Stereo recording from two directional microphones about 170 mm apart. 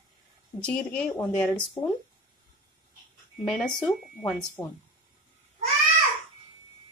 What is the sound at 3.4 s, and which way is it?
Speech, centre (ahead or behind).